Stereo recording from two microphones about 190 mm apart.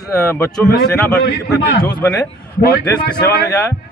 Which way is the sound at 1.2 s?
60° left (ahead or behind).